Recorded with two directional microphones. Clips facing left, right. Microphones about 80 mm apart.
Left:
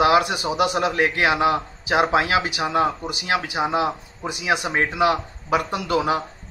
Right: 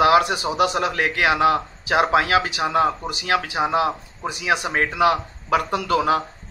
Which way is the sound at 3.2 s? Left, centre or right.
Left.